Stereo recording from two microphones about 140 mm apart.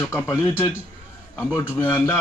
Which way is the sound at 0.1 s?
15° left (ahead or behind).